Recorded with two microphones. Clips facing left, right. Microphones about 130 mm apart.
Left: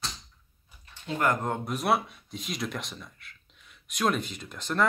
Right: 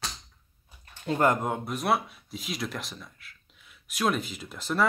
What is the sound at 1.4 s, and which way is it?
Speech, 5° right (ahead or behind).